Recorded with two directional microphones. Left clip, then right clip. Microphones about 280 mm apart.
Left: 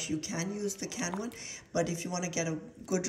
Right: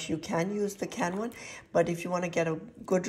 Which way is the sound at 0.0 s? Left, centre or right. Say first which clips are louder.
Right 5 dB; centre.